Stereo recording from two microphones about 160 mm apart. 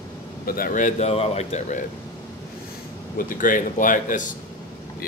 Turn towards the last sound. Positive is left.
turn(degrees=55)  # may be behind; listen again after turning